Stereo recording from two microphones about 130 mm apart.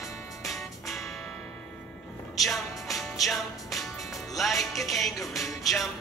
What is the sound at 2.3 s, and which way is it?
Music, centre (ahead or behind).